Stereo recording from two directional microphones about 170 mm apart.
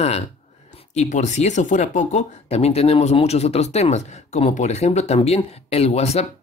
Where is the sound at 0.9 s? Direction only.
45° left (ahead or behind).